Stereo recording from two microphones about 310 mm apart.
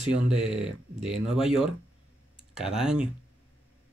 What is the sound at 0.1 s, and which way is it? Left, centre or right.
Speech, centre.